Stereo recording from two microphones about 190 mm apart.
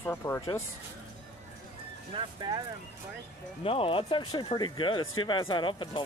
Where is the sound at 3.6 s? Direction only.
30° left (ahead or behind).